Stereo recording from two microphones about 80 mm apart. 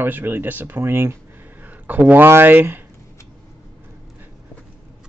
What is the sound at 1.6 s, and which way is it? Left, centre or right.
Speech, right.